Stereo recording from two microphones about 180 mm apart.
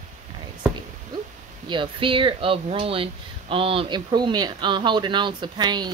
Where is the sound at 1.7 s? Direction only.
30° right (ahead or behind).